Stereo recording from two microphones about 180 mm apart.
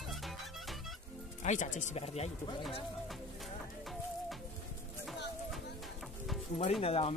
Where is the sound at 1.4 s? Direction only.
40° left (ahead or behind).